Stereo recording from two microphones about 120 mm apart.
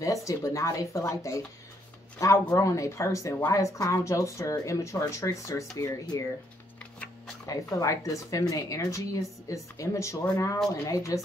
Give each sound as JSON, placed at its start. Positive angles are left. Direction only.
{"t": 0.0, "sound": "speech", "side_deg": 25}
{"t": 7.4, "sound": "speech", "side_deg": 25}